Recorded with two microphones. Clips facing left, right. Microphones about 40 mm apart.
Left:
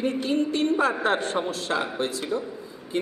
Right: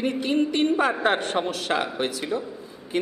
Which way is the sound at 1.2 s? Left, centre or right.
Right.